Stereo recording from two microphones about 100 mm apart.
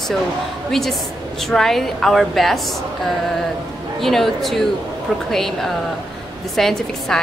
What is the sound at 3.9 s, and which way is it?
A woman's voice, centre (ahead or behind).